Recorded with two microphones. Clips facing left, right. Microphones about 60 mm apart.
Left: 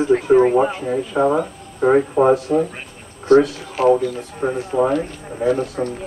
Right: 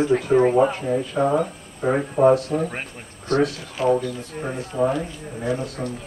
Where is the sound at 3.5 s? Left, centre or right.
Left.